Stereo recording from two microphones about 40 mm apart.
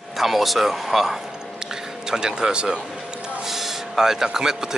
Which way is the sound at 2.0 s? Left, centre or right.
Centre.